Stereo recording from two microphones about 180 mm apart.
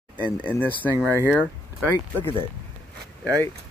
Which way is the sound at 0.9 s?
10° right (ahead or behind).